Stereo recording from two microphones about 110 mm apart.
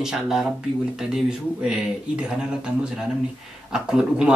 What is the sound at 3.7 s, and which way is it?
Speech, 5° right (ahead or behind).